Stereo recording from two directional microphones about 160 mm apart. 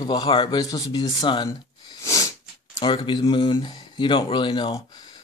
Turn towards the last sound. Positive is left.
turn(degrees=30)  # may be behind; listen again after turning